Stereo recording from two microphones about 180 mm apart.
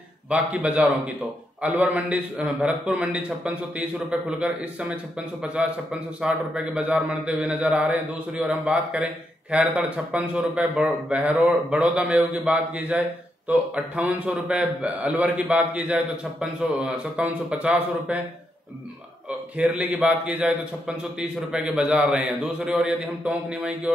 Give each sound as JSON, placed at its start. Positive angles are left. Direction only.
{"t": 0.3, "sound": "a man's voice", "side_deg": -5}
{"t": 19.5, "sound": "a man's voice", "side_deg": -10}